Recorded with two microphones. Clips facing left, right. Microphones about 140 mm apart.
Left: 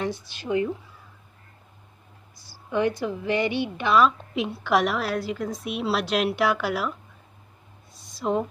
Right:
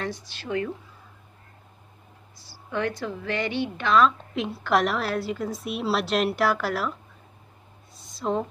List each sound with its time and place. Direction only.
0.3 s speech: 15° left (ahead or behind)
2.3 s a woman's voice: 15° left (ahead or behind)
7.9 s a sound: centre (ahead or behind)